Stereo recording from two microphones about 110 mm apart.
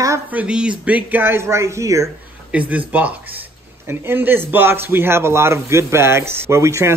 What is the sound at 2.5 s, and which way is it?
Speech, 15° right (ahead or behind).